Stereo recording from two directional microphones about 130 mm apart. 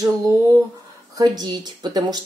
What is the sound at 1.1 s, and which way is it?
Speech, 30° right (ahead or behind).